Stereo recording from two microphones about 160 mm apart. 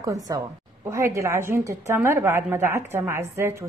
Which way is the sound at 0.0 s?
20° right (ahead or behind).